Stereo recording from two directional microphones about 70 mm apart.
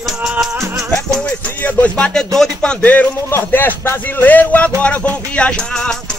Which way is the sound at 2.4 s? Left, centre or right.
Centre.